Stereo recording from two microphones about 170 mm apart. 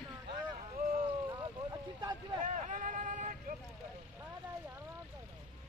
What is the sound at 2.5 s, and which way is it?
Vehicle, 45° right (ahead or behind).